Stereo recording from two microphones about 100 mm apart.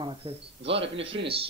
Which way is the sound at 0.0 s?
70° right (ahead or behind).